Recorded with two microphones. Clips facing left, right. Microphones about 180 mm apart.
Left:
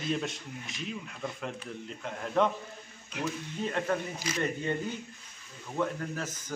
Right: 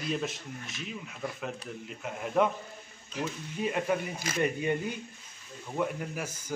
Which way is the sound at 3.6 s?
10° right (ahead or behind).